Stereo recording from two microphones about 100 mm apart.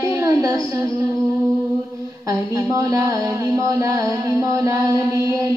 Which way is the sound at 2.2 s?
35° right (ahead or behind).